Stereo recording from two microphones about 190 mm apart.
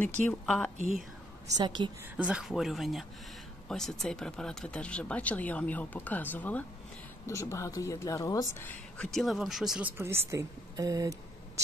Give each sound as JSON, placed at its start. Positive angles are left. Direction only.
{"t": 0.2, "sound": "speech", "side_deg": 5}
{"t": 1.6, "sound": "a woman's voice", "side_deg": -25}
{"t": 2.1, "sound": "speech", "side_deg": -5}
{"t": 9.9, "sound": "speech", "side_deg": -15}